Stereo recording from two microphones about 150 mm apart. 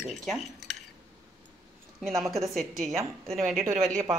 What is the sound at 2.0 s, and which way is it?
Speech, centre (ahead or behind).